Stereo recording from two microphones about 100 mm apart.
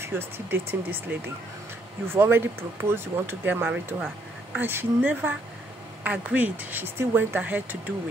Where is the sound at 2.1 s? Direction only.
20° right (ahead or behind).